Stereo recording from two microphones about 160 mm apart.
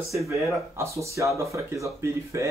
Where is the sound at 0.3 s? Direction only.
20° right (ahead or behind).